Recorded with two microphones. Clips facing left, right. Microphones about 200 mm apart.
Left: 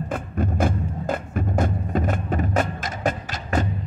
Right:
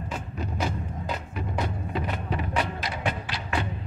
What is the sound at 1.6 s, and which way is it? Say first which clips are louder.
Music: left 6 dB; 45° left (ahead or behind).